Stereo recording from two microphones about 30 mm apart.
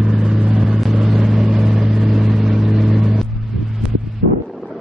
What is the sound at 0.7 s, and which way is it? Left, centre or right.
Vehicle, centre.